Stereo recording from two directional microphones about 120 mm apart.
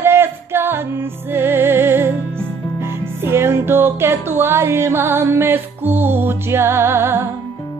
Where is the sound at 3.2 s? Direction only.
20° right (ahead or behind).